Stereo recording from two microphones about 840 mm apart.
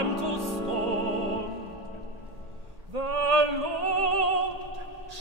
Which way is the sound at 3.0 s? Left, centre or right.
Right.